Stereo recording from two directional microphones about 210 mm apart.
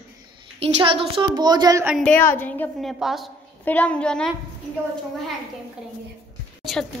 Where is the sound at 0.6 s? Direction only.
25° right (ahead or behind).